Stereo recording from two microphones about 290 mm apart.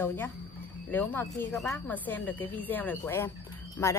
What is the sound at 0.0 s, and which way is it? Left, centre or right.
A woman's voice, centre.